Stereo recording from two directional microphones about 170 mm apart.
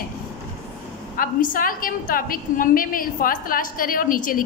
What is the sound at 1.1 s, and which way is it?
A woman's voice, 55° left (ahead or behind).